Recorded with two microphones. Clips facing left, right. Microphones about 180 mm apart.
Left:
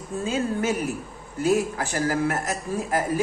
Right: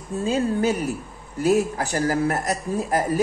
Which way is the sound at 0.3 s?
35° right (ahead or behind).